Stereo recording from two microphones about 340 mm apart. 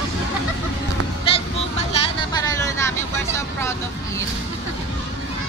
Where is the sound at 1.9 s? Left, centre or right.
Centre.